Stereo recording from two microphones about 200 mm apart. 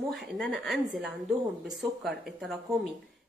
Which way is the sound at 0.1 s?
Centre (ahead or behind).